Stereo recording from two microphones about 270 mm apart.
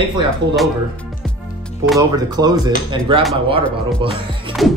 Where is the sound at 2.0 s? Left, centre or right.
Centre.